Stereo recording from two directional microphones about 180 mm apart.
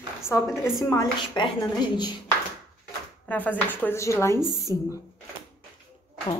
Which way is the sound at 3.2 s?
10° left (ahead or behind).